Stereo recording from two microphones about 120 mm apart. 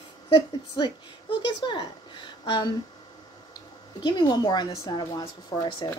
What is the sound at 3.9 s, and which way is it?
Speech, 40° left (ahead or behind).